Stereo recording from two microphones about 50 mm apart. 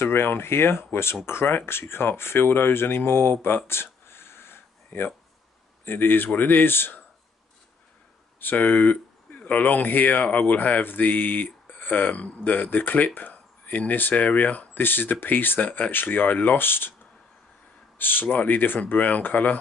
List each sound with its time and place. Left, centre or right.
0.0 s speech: left
8.4 s speech: left
17.9 s speech: left